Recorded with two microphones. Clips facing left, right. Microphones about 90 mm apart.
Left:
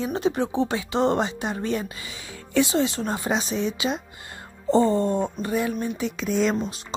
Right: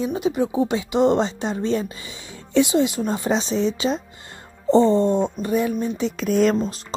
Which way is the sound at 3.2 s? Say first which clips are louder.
Right 5 dB; 30° right (ahead or behind).